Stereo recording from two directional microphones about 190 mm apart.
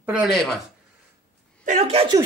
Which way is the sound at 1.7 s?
35° right (ahead or behind).